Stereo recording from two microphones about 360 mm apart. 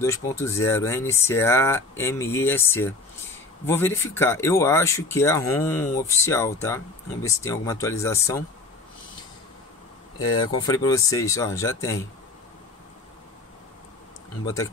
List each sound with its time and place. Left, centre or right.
0.0 s speech: centre
10.2 s speech: centre
14.4 s speech: centre